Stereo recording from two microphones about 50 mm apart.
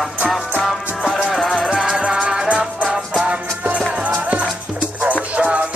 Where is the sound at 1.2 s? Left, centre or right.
Centre.